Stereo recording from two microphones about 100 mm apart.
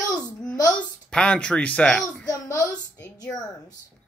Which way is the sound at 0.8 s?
10° left (ahead or behind).